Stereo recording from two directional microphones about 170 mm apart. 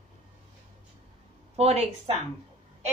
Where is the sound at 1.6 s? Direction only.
40° right (ahead or behind).